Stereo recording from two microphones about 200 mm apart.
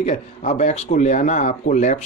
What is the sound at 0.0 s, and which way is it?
Speech, 30° left (ahead or behind).